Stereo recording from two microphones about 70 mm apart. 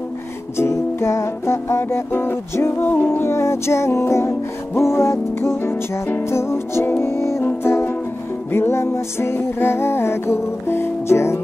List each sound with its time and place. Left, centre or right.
0.6 s music: left